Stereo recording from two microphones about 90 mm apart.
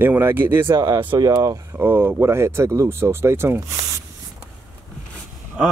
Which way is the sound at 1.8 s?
25° right (ahead or behind).